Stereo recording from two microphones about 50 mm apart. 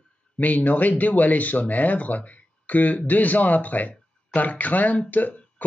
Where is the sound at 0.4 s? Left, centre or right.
Left.